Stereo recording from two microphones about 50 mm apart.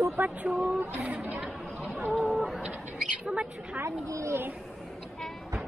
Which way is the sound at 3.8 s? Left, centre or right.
Right.